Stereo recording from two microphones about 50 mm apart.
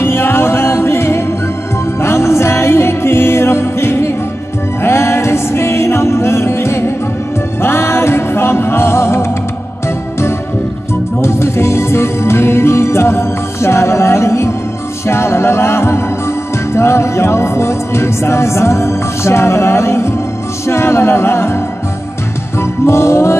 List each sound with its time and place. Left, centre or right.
0.0 s music: left
11.1 s music: left
22.6 s music: left